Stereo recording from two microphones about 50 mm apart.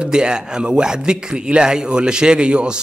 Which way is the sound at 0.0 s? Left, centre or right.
Centre.